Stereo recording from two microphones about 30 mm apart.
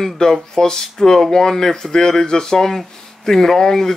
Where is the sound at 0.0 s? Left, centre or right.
Centre.